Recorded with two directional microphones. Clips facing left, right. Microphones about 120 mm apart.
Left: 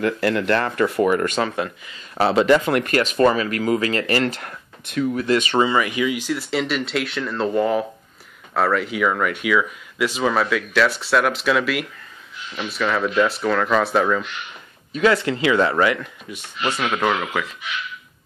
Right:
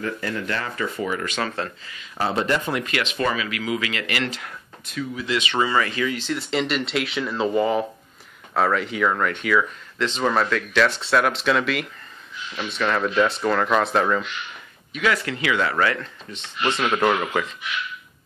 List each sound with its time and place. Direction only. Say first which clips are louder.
0.0 s speech: left 7 dB; 75° left (ahead or behind); by 1.4 s 50° left (ahead or behind)
1.4 s speech: left 4 dB; 15° left (ahead or behind)
2.1 s speech: left 7 dB; 85° left
2.9 s speech: left 9 dB; 40° left (ahead or behind)
5.6 s speech: left 3 dB; 15° left (ahead or behind); by 14.2 s centre (ahead or behind)
14.9 s speech: left 5 dB; 30° left (ahead or behind); by 17.6 s centre (ahead or behind)